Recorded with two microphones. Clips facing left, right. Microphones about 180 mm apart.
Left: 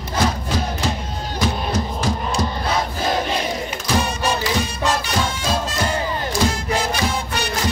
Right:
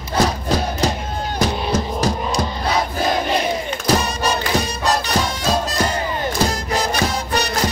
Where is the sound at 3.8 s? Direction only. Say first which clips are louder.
Right 2 dB; 40° right (ahead or behind).